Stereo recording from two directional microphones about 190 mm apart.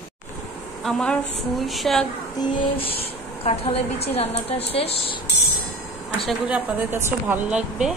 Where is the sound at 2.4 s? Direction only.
30° left (ahead or behind).